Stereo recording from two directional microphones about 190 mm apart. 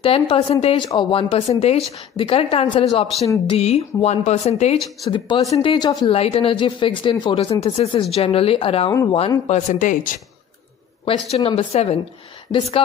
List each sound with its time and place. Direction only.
0.0 s speech: 30° left (ahead or behind)
4.7 s speech: centre (ahead or behind)
5.1 s speech: 20° left (ahead or behind); by 10.2 s 45° left (ahead or behind)
11.3 s speech: 30° left (ahead or behind)